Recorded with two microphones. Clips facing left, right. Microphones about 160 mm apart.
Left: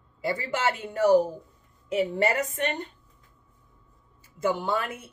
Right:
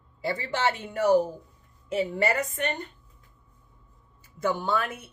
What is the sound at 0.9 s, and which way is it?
Speech, 30° left (ahead or behind).